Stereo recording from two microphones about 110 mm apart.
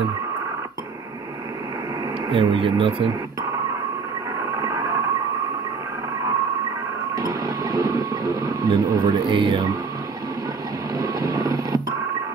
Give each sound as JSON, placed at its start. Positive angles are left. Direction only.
{"t": 2.3, "sound": "speech", "side_deg": -55}
{"t": 4.6, "sound": "a sound", "side_deg": -30}
{"t": 7.2, "sound": "vehicle", "side_deg": -35}
{"t": 11.0, "sound": "vehicle", "side_deg": -35}